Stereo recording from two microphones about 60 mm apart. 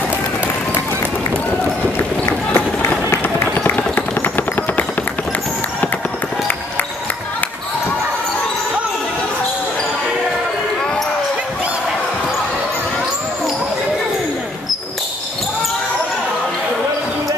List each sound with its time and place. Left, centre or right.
2.2 s run: left
3.5 s music: left